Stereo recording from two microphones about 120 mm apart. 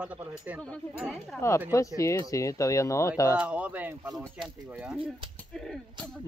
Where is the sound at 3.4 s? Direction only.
10° right (ahead or behind).